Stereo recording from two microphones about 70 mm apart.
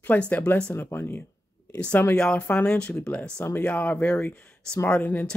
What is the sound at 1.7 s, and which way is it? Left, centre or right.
Speech, centre.